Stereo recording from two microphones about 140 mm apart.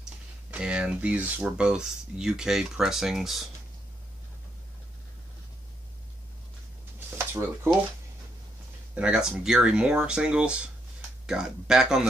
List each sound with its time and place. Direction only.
0.5 s speech: 5° right (ahead or behind)
7.2 s speech: 15° right (ahead or behind)
8.9 s speech: 5° right (ahead or behind)